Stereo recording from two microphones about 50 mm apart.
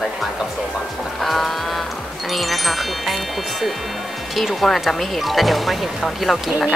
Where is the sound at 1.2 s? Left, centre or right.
Centre.